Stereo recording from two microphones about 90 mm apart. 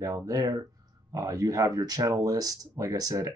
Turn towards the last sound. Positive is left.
turn(degrees=-40)  # may be behind; listen again after turning